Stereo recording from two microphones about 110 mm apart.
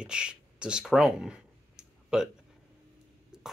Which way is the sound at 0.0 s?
10° right (ahead or behind).